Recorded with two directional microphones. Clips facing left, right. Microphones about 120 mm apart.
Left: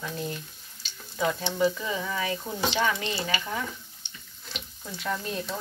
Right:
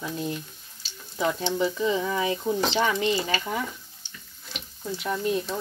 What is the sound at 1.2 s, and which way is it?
Speech, 25° right (ahead or behind).